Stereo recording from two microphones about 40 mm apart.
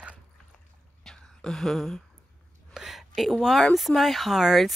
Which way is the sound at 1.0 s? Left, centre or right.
Centre.